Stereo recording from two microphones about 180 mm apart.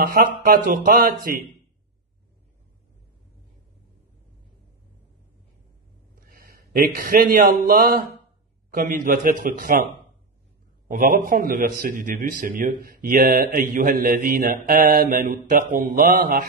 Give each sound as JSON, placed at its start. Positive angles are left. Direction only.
{"t": 0.0, "sound": "a man's voice", "side_deg": -50}
{"t": 6.2, "sound": "a man's voice", "side_deg": -55}
{"t": 10.9, "sound": "a man's voice", "side_deg": -45}